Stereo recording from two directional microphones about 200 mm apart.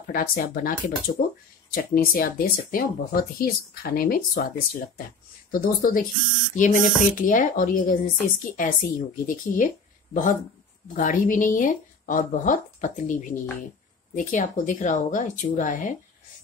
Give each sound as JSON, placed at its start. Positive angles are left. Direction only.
{"t": 0.1, "sound": "speech", "side_deg": 45}
{"t": 5.5, "sound": "speech", "side_deg": 45}
{"t": 11.0, "sound": "speech", "side_deg": 40}